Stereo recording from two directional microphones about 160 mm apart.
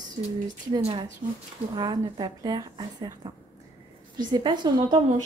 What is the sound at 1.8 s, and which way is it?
A woman's voice, 25° right (ahead or behind).